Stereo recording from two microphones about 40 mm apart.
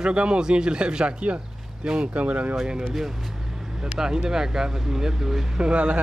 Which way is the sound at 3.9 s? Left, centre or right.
Centre.